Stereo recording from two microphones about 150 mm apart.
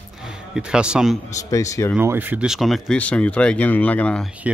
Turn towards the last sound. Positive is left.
turn(degrees=5)  # may be behind; listen again after turning